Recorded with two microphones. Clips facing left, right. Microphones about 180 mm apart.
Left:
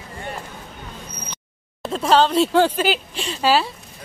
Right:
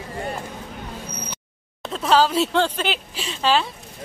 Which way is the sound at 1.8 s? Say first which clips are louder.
Left 2 dB; centre (ahead or behind).